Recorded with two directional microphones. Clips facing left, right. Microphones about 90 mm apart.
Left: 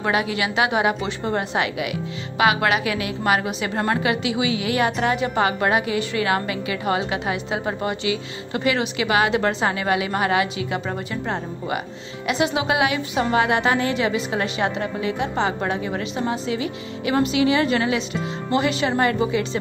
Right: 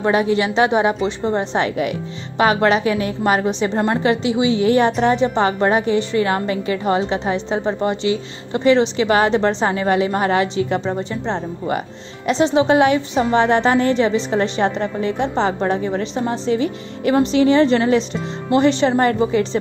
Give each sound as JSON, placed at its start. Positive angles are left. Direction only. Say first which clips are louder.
{"t": 0.0, "sound": "a woman's voice", "louder": "right 6 dB", "side_deg": -30}
{"t": 1.5, "sound": "a woman's voice", "louder": "right 4 dB", "side_deg": -35}
{"t": 10.9, "sound": "a woman's voice", "louder": "right 4 dB", "side_deg": -25}
{"t": 12.5, "sound": "a woman's voice", "louder": "right 7 dB", "side_deg": -35}